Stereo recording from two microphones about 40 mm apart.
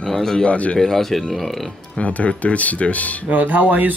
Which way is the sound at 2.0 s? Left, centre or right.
Left.